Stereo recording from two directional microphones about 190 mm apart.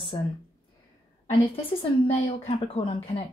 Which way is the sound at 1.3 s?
30° left (ahead or behind).